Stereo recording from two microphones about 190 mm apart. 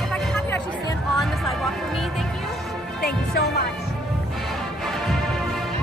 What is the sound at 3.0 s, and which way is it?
Music, 55° left (ahead or behind).